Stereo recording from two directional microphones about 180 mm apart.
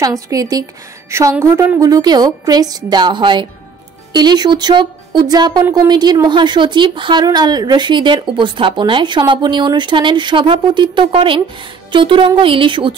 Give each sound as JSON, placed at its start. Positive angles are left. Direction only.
{"t": 0.0, "sound": "speech", "side_deg": -20}